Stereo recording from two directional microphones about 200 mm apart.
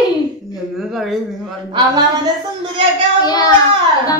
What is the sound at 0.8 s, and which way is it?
Speech, centre (ahead or behind).